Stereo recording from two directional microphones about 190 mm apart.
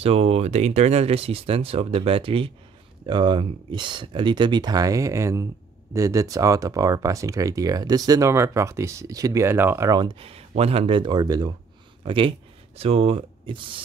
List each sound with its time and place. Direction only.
0.0 s speech: 35° right (ahead or behind)